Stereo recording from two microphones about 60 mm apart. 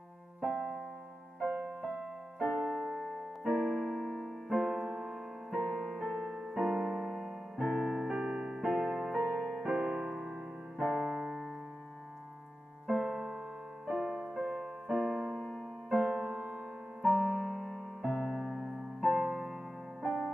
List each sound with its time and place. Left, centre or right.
0.4 s music: centre
3.0 s keyboard: centre
4.5 s music: centre
8.1 s music: right
8.4 s music: centre
9.7 s music: centre
12.8 s music: centre
15.0 s keyboard: centre
16.1 s music: centre
17.0 s keyboard: centre
18.0 s music: centre